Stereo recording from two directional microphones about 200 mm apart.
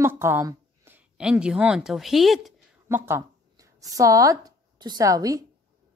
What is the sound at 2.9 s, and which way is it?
Speech, 10° right (ahead or behind).